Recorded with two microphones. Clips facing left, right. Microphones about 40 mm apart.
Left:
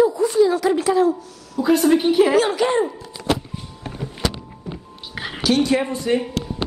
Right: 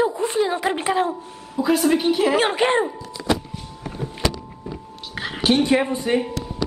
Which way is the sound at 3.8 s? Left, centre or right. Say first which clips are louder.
Right 1 dB; left.